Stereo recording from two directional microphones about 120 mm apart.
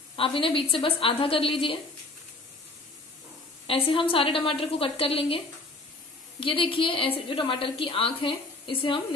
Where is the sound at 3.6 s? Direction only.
50° left (ahead or behind).